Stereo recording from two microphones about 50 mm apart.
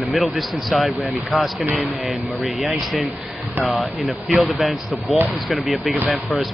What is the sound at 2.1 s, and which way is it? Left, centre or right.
A man's voice, centre.